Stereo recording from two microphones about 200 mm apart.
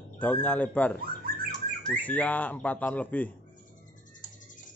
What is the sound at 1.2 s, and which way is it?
Squawk, 50° right (ahead or behind).